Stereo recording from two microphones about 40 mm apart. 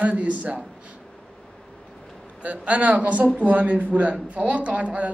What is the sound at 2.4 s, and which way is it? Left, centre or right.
A woman's voice, right.